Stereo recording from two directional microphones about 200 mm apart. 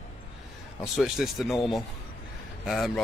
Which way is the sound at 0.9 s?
Centre (ahead or behind).